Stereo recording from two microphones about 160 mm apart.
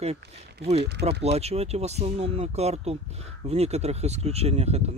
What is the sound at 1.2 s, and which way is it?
Speech, 40° right (ahead or behind).